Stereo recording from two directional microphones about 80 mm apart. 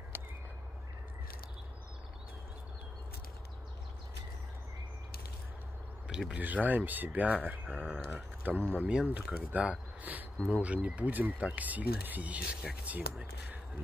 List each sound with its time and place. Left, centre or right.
0.1 s whip: right
6.0 s speech: centre
6.4 s speech: right